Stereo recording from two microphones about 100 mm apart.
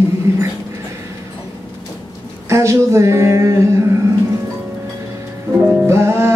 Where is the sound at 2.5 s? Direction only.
30° right (ahead or behind).